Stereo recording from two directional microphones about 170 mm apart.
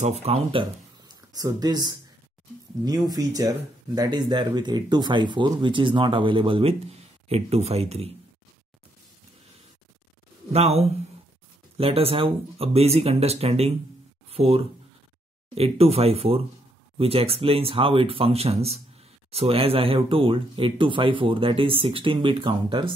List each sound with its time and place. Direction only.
0.0 s speech: 40° right (ahead or behind)
10.5 s speech: 35° right (ahead or behind)